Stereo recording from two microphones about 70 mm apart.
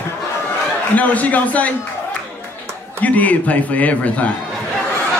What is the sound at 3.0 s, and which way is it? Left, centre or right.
Speech, left.